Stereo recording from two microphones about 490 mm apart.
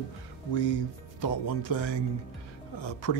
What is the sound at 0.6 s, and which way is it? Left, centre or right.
A man's voice, left.